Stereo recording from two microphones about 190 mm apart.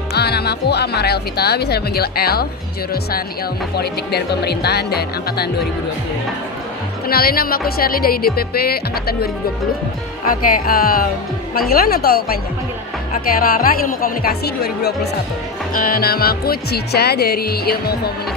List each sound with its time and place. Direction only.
0.1 s speech: 55° left (ahead or behind)
3.7 s speech: 55° left (ahead or behind)
7.1 s speech: 55° left (ahead or behind)
13.4 s speech: 50° left (ahead or behind)